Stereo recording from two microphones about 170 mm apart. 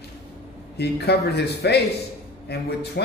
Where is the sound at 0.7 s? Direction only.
75° left (ahead or behind).